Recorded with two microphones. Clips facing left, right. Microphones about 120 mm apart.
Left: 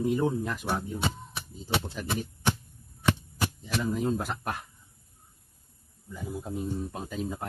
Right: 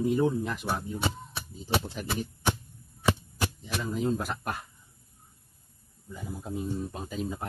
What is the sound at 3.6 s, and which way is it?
Speech, 50° left (ahead or behind).